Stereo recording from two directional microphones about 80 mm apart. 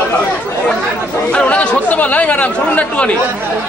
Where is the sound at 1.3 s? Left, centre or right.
Centre.